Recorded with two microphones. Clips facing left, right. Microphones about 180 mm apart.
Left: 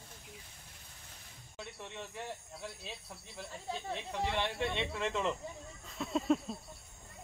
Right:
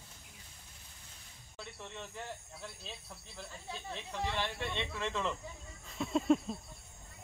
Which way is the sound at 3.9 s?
15° left (ahead or behind).